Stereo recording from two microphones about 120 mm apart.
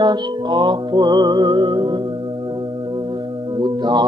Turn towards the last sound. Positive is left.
turn(degrees=-35)  # may be behind; listen again after turning